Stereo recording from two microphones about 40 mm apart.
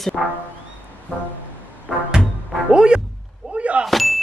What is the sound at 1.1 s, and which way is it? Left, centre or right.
Music, left.